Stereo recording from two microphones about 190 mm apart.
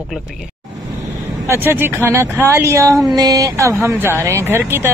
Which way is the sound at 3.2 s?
20° right (ahead or behind).